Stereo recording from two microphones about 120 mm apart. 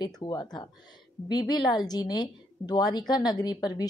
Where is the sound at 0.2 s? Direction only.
35° left (ahead or behind).